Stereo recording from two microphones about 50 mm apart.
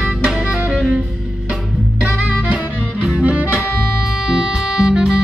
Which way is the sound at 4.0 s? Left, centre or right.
Centre.